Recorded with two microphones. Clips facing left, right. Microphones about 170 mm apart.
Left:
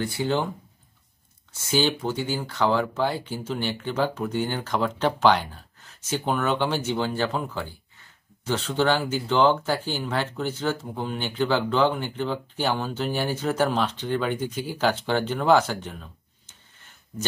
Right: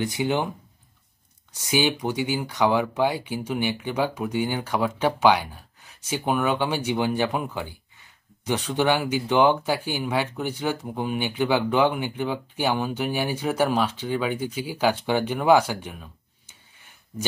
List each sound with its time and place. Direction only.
0.0 s speech: 15° right (ahead or behind)
1.5 s speech: 15° right (ahead or behind)